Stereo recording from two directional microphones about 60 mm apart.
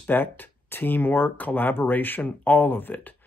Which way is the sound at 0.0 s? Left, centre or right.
Left.